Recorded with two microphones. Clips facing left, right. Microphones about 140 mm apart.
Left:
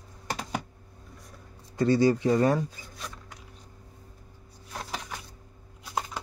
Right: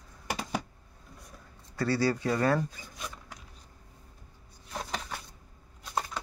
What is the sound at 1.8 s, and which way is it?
Speech, 20° left (ahead or behind).